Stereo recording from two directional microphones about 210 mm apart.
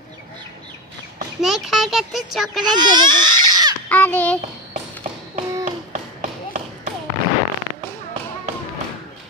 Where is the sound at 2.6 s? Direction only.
20° right (ahead or behind).